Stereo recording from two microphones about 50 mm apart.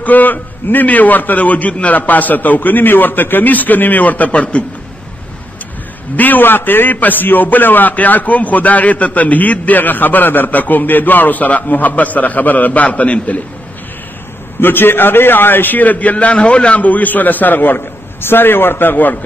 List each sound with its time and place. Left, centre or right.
0.0 s a man's voice: left
6.1 s a man's voice: left
14.6 s a man's voice: left